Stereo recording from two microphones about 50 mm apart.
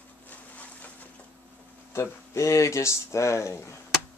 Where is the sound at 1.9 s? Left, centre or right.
Left.